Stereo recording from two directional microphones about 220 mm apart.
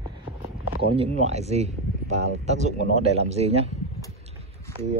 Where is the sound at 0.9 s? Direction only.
30° right (ahead or behind).